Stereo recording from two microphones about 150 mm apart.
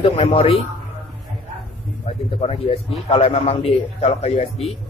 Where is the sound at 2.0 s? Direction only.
40° left (ahead or behind).